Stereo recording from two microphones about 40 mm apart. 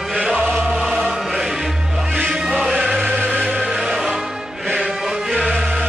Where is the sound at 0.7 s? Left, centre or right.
Centre.